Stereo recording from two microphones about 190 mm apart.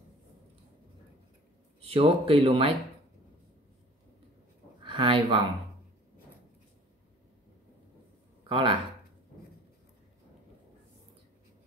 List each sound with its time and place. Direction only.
1.8 s speech: 30° right (ahead or behind)
4.8 s speech: 25° right (ahead or behind)
8.5 s speech: 30° right (ahead or behind)